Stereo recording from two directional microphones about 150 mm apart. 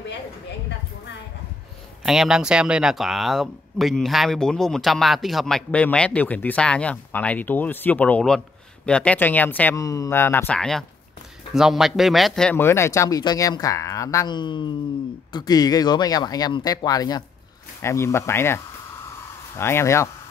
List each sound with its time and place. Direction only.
2.0 s speech: 5° right (ahead or behind)
12.5 s speech: 15° left (ahead or behind)